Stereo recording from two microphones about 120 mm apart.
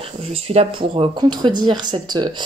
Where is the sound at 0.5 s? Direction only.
55° right (ahead or behind).